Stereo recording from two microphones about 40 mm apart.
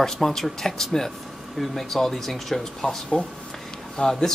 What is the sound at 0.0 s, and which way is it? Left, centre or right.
A man's voice, centre.